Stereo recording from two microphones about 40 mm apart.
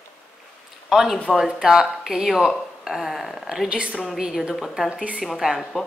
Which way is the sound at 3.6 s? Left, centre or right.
Right.